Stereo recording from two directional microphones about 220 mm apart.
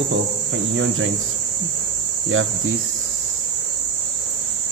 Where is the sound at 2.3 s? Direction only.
65° right (ahead or behind).